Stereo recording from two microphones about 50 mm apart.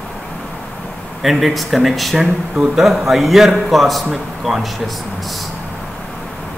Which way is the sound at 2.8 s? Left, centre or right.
Centre.